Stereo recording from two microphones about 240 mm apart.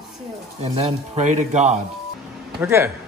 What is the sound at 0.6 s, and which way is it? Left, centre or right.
Speech, right.